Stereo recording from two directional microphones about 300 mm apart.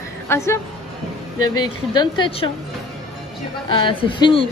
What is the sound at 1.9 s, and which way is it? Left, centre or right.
Speech, centre.